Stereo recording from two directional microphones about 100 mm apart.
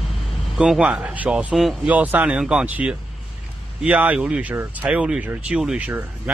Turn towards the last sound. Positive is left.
turn(degrees=-15)  # may be behind; listen again after turning